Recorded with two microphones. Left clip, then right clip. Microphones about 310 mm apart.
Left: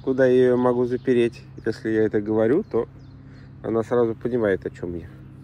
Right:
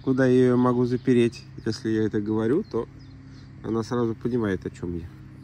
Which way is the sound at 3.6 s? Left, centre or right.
Centre.